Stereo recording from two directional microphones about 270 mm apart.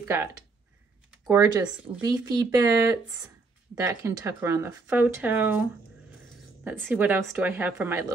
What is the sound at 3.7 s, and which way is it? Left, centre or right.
Speech, centre.